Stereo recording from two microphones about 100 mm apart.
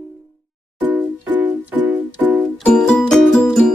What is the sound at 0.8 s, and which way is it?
Music, 15° right (ahead or behind).